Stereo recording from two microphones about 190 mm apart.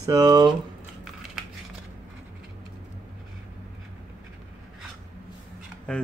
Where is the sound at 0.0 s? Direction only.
20° right (ahead or behind).